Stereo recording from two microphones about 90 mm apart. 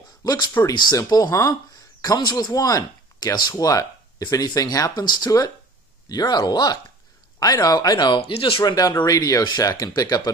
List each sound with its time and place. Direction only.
0.2 s speech: 50° left (ahead or behind)
8.2 s speech: 90° left
8.6 s speech: 45° left (ahead or behind)